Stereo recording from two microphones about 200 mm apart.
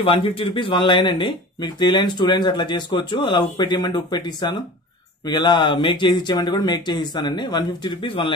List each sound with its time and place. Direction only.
0.0 s speech: 25° left (ahead or behind)